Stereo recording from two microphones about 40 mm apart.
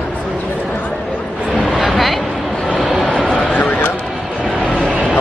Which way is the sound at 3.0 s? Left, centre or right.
Centre.